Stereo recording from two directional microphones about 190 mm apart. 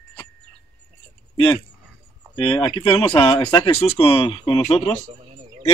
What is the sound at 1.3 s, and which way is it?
Speech, 25° left (ahead or behind).